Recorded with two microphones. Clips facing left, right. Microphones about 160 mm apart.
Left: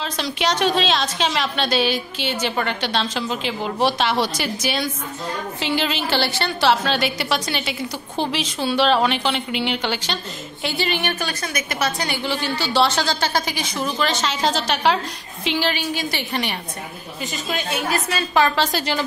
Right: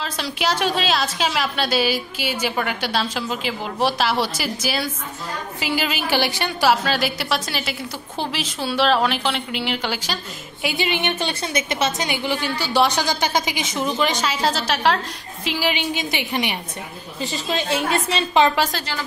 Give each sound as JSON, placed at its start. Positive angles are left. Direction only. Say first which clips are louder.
{"t": 0.0, "sound": "a woman's voice", "louder": "left 1 dB", "side_deg": -5}
{"t": 10.6, "sound": "a woman's voice", "louder": "right 1 dB", "side_deg": -15}
{"t": 15.7, "sound": "a woman's voice", "louder": "even", "side_deg": -20}
{"t": 17.2, "sound": "a woman's voice", "louder": "right 2 dB", "side_deg": -30}